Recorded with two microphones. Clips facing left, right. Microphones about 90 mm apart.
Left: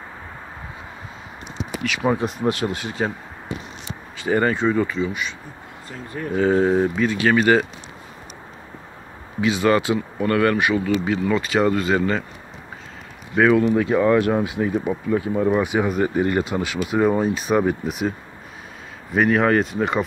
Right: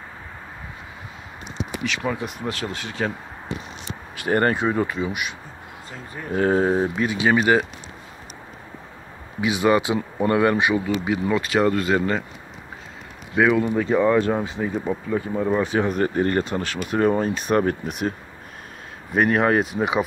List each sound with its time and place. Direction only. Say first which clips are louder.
2.0 s speech: left 10 dB; 25° left (ahead or behind); by 3.1 s 10° left (ahead or behind)
4.3 s speech: left 1 dB; 5° right (ahead or behind)
7.2 s speech: even; 15° right (ahead or behind)
9.4 s speech: left 1 dB; 15° right (ahead or behind)
11.3 s speech: even; centre (ahead or behind)
13.4 s speech: left 3 dB; 5° right (ahead or behind)
15.6 s speech: left 1 dB; 15° left (ahead or behind)
19.1 s speech: left 1 dB; centre (ahead or behind)